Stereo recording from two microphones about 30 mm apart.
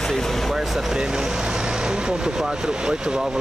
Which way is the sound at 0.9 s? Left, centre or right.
Right.